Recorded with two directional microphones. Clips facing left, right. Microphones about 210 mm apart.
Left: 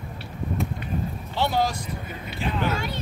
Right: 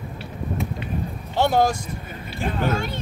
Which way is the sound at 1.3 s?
50° right (ahead or behind).